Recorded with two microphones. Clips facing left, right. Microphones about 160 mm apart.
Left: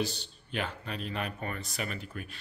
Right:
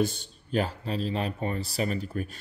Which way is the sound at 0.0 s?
50° right (ahead or behind).